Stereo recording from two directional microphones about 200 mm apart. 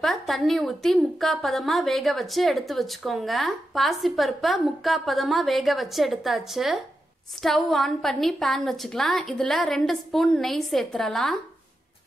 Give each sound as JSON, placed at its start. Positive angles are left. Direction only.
{"t": 0.0, "sound": "a woman's voice", "side_deg": 0}